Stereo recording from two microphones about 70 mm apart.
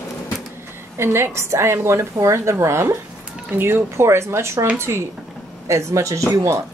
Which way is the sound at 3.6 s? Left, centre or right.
Right.